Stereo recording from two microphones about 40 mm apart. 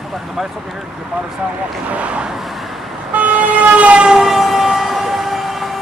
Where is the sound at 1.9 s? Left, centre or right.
Right.